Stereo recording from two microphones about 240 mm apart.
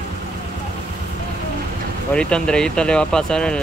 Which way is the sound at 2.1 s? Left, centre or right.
Centre.